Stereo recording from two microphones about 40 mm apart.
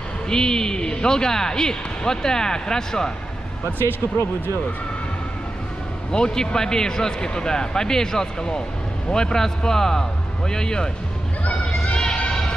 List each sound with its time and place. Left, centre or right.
0.3 s speech: centre
6.1 s speech: left
11.8 s a sound: left